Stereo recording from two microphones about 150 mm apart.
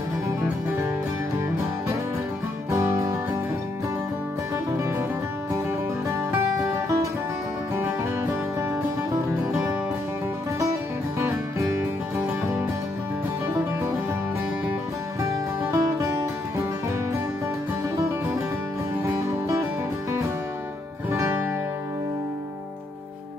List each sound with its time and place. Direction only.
2.7 s music: 20° right (ahead or behind)
11.1 s music: 15° right (ahead or behind)
15.7 s music: 20° right (ahead or behind)
21.1 s music: 20° right (ahead or behind)